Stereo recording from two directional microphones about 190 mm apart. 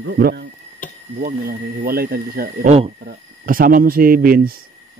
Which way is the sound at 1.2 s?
50° right (ahead or behind).